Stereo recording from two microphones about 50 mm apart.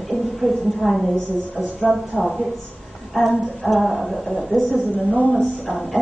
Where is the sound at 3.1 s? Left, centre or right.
Centre.